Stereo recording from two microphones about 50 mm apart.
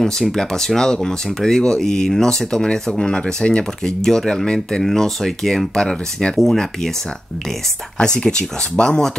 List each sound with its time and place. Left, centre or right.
0.0 s speech: centre
8.0 s speech: centre